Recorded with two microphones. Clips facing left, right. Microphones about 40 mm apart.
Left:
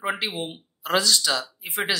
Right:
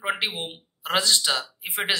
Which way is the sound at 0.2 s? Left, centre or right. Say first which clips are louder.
Even; right.